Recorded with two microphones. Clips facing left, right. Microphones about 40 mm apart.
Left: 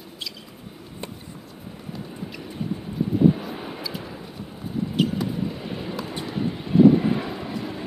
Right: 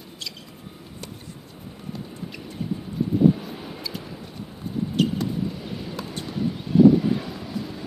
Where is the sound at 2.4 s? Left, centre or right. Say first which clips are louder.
Even; centre.